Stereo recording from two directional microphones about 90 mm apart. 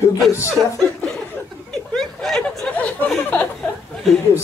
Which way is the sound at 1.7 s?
5° left (ahead or behind).